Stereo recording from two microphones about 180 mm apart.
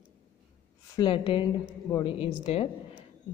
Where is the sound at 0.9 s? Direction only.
25° left (ahead or behind).